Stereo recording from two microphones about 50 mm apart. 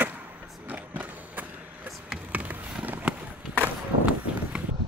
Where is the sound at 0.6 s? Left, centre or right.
Right.